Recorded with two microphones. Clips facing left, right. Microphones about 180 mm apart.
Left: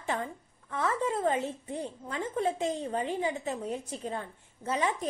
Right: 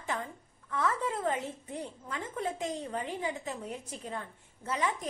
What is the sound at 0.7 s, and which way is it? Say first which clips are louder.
A woman's voice: left 2 dB; 25° left (ahead or behind).